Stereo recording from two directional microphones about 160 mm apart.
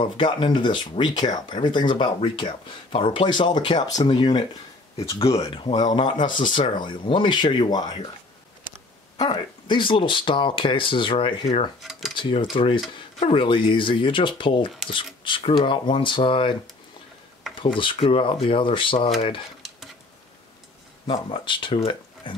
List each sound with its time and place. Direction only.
0.0 s speech: 30° left (ahead or behind)
9.2 s speech: 30° left (ahead or behind)
11.8 s cutlery: centre (ahead or behind)
12.2 s speech: 30° left (ahead or behind)
17.9 s speech: 35° left (ahead or behind)
21.1 s speech: 30° left (ahead or behind)
22.2 s a sound: 30° left (ahead or behind)